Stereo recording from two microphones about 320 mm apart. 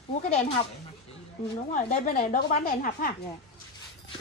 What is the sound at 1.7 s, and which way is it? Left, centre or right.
A woman's voice, left.